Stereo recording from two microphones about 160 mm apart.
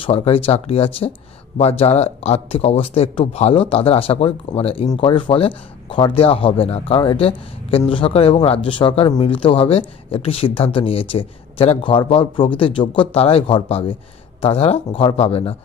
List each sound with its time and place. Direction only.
0.0 s a man's voice: 35° left (ahead or behind)